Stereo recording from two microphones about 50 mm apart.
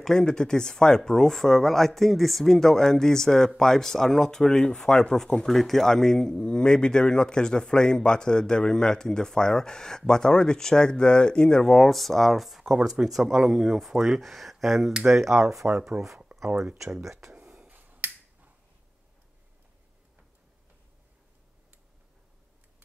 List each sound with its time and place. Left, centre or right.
0.1 s speech: centre
17.3 s finger snapping: right